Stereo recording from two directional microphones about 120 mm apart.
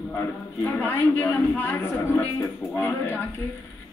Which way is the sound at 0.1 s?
10° left (ahead or behind).